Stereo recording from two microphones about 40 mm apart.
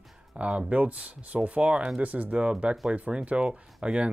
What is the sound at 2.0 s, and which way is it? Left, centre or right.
Speech, right.